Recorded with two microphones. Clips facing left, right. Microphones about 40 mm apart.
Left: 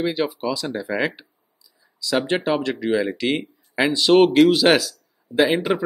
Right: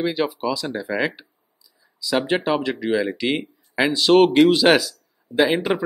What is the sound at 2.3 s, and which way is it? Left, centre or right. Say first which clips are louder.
Speech: even; centre.